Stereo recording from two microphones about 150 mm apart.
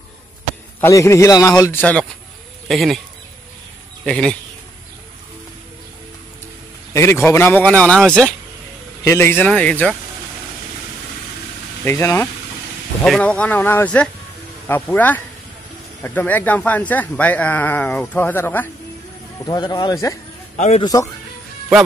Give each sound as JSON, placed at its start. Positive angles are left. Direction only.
{"t": 0.7, "sound": "speech", "side_deg": 20}
{"t": 4.0, "sound": "speech", "side_deg": 5}
{"t": 6.9, "sound": "a man's voice", "side_deg": 15}
{"t": 11.8, "sound": "speech", "side_deg": 20}
{"t": 13.0, "sound": "speech", "side_deg": 5}
{"t": 19.4, "sound": "speech", "side_deg": 25}
{"t": 20.5, "sound": "a man's voice", "side_deg": 50}
{"t": 20.8, "sound": "speech", "side_deg": 25}